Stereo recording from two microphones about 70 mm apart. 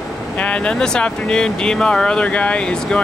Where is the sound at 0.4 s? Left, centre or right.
Centre.